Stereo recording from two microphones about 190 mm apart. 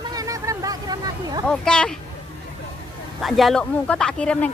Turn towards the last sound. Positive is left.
turn(degrees=5)  # may be behind; listen again after turning